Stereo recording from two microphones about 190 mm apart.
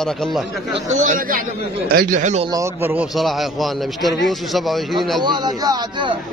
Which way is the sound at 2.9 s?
Centre (ahead or behind).